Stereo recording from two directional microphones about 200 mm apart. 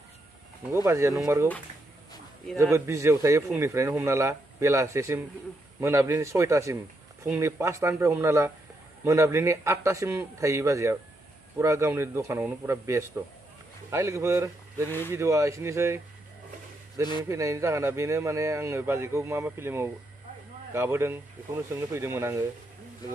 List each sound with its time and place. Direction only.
0.8 s speech: 15° right (ahead or behind)
2.5 s speech: 15° right (ahead or behind)
14.9 s speech: 10° left (ahead or behind)
15.1 s speech: 15° right (ahead or behind)
17.2 s speech: 15° right (ahead or behind)